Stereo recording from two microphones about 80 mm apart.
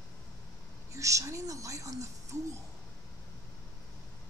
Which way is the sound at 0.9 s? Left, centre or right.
Right.